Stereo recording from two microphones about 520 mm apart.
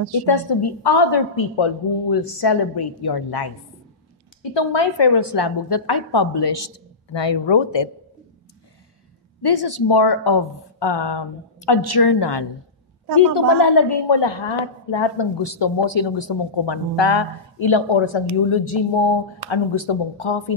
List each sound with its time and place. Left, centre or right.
0.5 s a woman's voice: left
9.4 s a woman's voice: left